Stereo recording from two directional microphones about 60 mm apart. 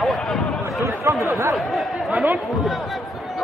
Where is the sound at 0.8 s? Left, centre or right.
Right.